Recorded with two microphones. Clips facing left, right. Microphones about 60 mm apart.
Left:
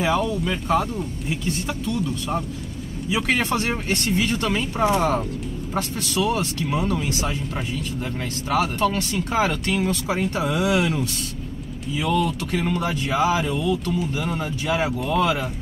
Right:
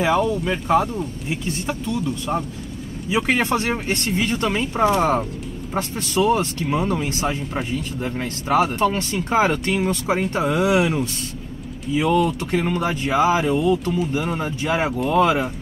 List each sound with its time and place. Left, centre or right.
0.0 s speech: centre
4.8 s speech: right